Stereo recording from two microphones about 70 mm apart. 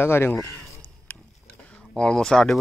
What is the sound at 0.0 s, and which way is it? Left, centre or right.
Speech, left.